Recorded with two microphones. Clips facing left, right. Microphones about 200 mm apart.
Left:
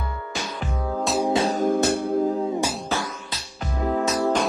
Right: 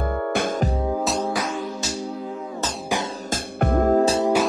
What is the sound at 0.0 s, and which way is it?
Music, 55° right (ahead or behind).